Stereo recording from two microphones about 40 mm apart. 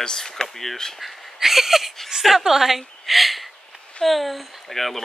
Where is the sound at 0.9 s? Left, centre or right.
Centre.